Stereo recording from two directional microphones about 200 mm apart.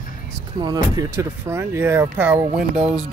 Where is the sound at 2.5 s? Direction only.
5° right (ahead or behind).